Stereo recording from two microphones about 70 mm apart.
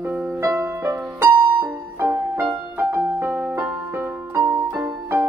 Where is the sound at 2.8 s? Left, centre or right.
Right.